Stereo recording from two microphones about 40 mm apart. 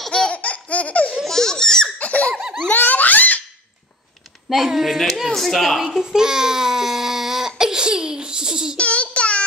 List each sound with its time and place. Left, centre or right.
0.3 s laughter: left
1.2 s baby laughter: centre
2.0 s laughter: left
2.7 s giggle: left
4.5 s speech: centre
8.7 s a sound: left